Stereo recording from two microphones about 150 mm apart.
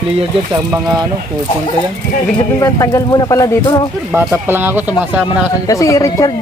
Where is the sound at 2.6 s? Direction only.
20° left (ahead or behind).